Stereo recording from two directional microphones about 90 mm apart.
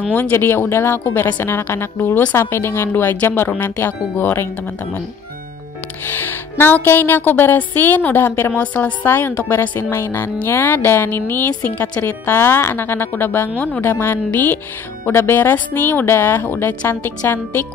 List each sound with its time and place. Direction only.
0.1 s music: 25° left (ahead or behind)
6.0 s music: 25° left (ahead or behind)